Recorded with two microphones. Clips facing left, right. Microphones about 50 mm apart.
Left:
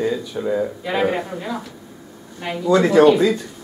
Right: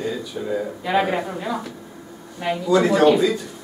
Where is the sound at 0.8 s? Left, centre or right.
Centre.